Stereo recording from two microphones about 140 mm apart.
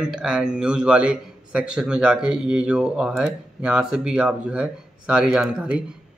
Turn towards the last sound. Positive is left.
turn(degrees=-5)  # may be behind; listen again after turning